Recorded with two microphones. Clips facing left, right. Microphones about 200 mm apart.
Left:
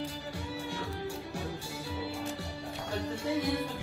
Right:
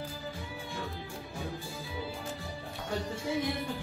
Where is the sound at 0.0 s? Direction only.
75° left (ahead or behind).